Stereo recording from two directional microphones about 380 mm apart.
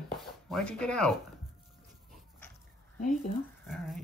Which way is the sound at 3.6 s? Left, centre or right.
Centre.